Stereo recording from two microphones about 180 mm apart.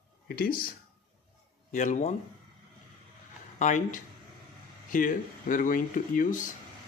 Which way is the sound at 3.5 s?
45° left (ahead or behind).